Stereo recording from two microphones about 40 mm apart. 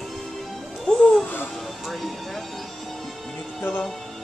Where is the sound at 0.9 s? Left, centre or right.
Left.